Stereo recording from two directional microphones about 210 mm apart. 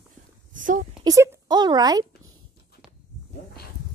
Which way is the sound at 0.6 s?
40° right (ahead or behind).